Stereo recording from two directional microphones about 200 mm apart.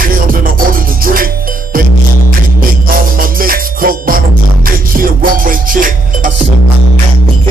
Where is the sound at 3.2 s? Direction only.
45° right (ahead or behind).